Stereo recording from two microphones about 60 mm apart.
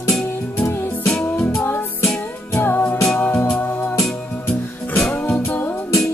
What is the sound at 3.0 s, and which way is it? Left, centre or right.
Music, left.